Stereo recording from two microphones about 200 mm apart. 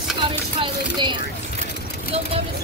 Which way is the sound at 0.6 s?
25° right (ahead or behind).